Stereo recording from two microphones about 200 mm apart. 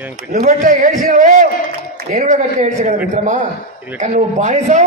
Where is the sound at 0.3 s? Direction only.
40° right (ahead or behind).